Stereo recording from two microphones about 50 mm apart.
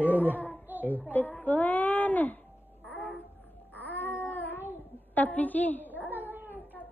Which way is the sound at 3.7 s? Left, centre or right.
Left.